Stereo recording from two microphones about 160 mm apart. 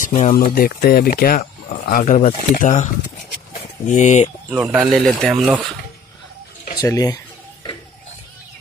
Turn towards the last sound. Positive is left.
turn(degrees=25)  # may be behind; listen again after turning